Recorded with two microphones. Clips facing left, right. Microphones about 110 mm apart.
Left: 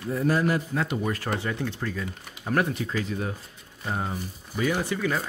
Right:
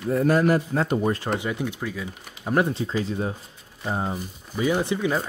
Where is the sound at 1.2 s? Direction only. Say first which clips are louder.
Right 2 dB; 15° right (ahead or behind).